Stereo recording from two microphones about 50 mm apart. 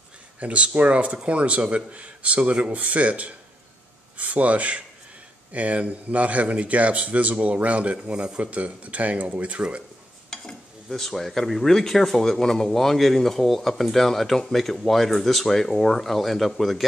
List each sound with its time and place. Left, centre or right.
0.4 s speech: right
10.3 s speech: centre